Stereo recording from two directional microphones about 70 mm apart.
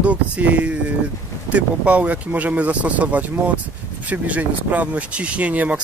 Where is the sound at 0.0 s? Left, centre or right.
Centre.